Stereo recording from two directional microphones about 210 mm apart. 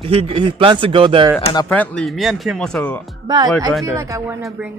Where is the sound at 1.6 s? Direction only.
5° left (ahead or behind).